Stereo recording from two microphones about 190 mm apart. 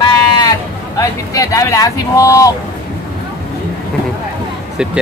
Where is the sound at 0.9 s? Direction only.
15° left (ahead or behind).